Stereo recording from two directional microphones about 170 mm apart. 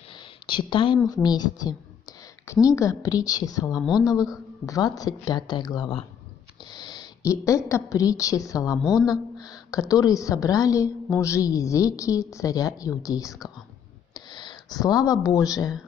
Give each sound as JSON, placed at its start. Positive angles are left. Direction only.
{"t": 0.1, "sound": "a woman's voice", "side_deg": 30}